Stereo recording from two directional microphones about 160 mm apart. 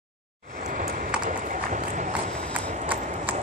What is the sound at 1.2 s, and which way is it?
Run, 55° right (ahead or behind).